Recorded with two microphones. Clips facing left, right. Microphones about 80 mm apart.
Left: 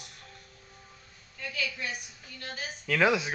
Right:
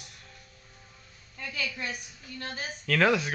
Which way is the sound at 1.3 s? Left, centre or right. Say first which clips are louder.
Even; right.